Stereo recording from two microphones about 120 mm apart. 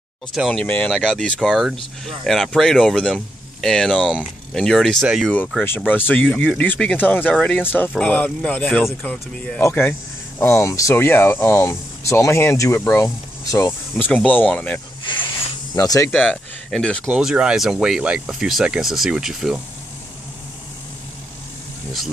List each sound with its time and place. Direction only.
0.3 s speech: centre (ahead or behind)
5.9 s speech: 15° left (ahead or behind)
15.7 s speech: 30° left (ahead or behind)
16.1 s speech: 10° left (ahead or behind)
17.1 s speech: 5° right (ahead or behind)